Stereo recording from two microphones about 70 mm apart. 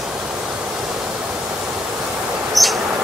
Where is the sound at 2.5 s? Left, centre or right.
Centre.